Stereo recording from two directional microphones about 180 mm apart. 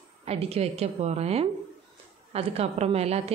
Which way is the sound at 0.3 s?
35° right (ahead or behind).